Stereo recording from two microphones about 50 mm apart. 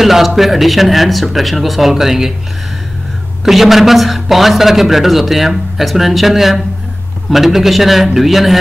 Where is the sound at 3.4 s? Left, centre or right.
Centre.